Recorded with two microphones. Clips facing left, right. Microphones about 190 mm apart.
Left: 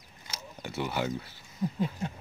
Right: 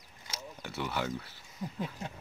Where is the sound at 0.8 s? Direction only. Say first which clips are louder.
Left 3 dB; 10° left (ahead or behind).